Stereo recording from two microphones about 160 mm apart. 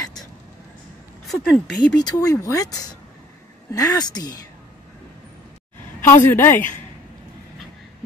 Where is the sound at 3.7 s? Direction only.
25° left (ahead or behind).